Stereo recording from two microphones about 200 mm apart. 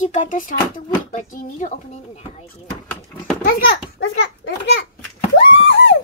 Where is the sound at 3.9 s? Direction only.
60° left (ahead or behind).